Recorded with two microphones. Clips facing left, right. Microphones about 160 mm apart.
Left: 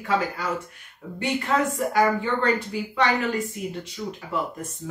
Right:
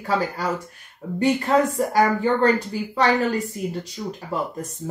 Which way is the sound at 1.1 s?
35° right (ahead or behind).